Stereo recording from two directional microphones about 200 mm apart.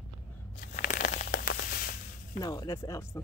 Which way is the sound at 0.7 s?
40° left (ahead or behind).